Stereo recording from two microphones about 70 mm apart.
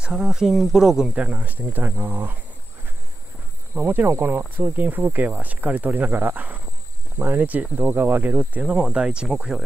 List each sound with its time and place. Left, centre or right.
0.0 s speech: centre
1.1 s speech: centre
3.7 s speech: right; by 9.6 s centre